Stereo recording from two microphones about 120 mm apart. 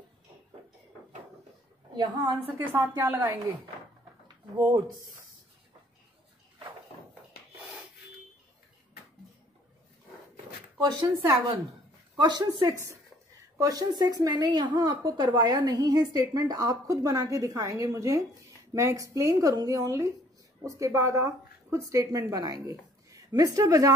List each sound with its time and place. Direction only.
2.0 s a woman's voice: 35° right (ahead or behind)
2.4 s a woman's voice: 15° right (ahead or behind)
2.9 s speech: 25° right (ahead or behind)
10.8 s a woman's voice: 30° right (ahead or behind)